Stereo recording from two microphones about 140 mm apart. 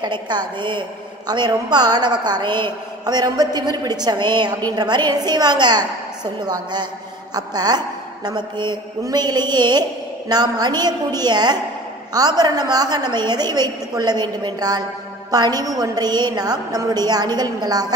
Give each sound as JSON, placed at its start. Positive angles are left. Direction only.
{"t": 0.0, "sound": "a woman's voice", "side_deg": -30}